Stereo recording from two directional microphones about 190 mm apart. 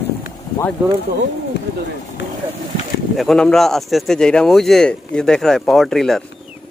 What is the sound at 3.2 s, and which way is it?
Speech, centre (ahead or behind).